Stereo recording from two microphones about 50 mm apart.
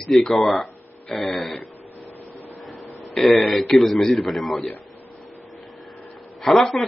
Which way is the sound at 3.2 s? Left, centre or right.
Centre.